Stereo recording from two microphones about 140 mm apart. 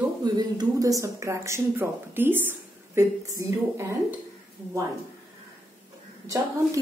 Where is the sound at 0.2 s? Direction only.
30° right (ahead or behind).